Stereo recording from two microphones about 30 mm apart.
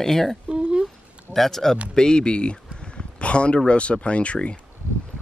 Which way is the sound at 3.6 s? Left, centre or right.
Left.